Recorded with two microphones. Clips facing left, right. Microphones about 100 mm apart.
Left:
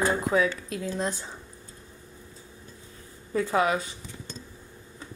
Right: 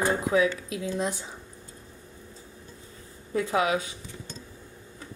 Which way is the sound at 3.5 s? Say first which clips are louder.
Left 1 dB; 45° left (ahead or behind).